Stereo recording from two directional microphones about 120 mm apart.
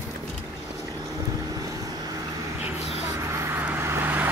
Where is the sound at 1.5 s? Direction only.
30° right (ahead or behind).